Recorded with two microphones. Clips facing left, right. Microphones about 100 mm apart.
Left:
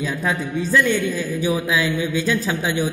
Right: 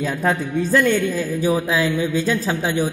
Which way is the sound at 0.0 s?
45° right (ahead or behind).